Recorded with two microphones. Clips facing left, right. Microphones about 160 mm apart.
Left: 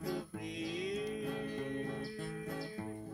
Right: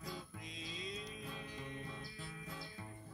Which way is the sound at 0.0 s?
60° left (ahead or behind).